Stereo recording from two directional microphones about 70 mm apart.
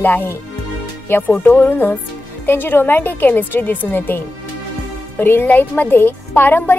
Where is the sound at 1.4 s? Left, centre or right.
Left.